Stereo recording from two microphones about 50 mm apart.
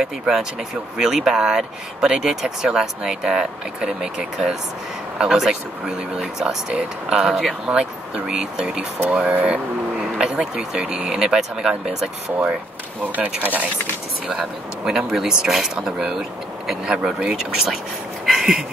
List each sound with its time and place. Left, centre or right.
0.0 s speech: centre
7.7 s speech: right
9.3 s speech: right
10.2 s speech: centre
13.0 s speech: right
14.9 s speech: centre
18.2 s a sound: centre